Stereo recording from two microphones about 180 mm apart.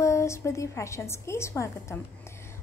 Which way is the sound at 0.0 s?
15° left (ahead or behind).